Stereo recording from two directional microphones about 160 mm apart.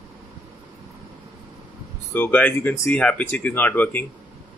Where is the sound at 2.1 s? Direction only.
10° left (ahead or behind).